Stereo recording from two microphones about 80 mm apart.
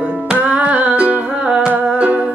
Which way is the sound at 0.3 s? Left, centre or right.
Centre.